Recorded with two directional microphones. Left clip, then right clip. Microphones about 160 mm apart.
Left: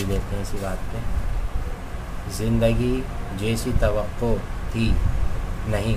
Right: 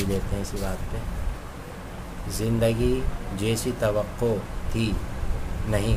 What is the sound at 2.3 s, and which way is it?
Speech, 15° right (ahead or behind).